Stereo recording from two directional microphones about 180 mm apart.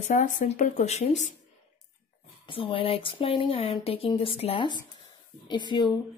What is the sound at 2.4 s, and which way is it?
Speech, 30° left (ahead or behind).